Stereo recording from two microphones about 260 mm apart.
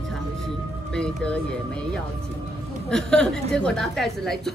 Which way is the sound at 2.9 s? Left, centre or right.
Centre.